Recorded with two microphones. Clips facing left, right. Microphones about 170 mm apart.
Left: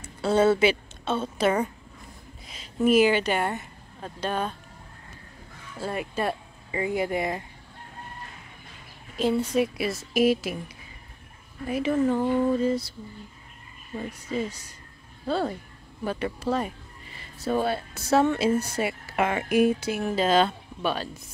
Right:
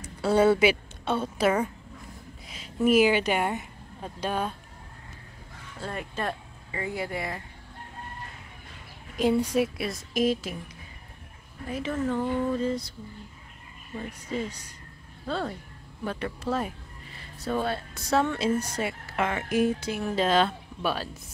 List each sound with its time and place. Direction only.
0.0 s a woman's voice: 10° right (ahead or behind)
5.8 s speech: 10° left (ahead or behind)
9.4 s a woman's voice: 10° right (ahead or behind)
9.8 s speech: 5° left (ahead or behind)
11.6 s speech: 10° left (ahead or behind)
15.2 s speech: 10° left (ahead or behind)